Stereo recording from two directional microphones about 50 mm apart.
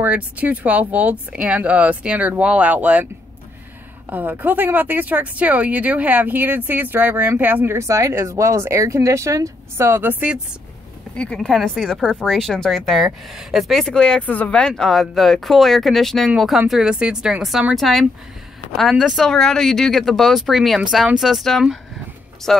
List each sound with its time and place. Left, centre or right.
0.0 s speech: right
4.1 s speech: right
7.6 s speech: right
11.3 s speech: centre
13.9 s speech: centre
14.2 s speech: left
14.7 s speech: centre
16.3 s speech: centre
17.7 s speech: centre
19.2 s speech: centre